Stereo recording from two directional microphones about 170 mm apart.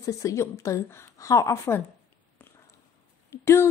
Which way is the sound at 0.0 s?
20° left (ahead or behind).